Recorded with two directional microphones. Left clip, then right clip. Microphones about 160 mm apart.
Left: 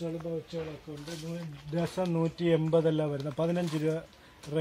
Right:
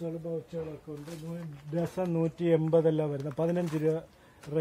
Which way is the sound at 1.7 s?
35° right (ahead or behind).